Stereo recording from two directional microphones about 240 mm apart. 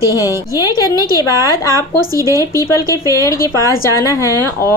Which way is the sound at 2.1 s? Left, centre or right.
Centre.